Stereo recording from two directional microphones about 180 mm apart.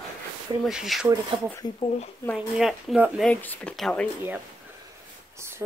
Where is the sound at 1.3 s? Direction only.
25° right (ahead or behind).